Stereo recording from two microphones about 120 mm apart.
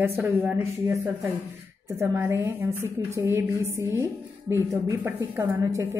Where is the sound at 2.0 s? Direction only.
20° right (ahead or behind).